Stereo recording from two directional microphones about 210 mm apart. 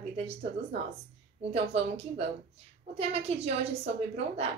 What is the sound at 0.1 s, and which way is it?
A woman's voice, 30° right (ahead or behind).